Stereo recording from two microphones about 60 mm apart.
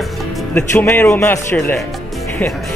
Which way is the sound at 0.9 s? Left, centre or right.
Left.